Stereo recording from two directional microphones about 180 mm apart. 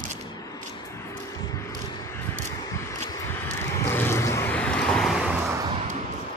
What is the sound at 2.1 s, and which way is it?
Vehicle, 10° left (ahead or behind).